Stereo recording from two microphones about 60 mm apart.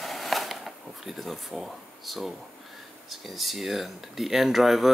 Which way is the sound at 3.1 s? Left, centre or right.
Centre.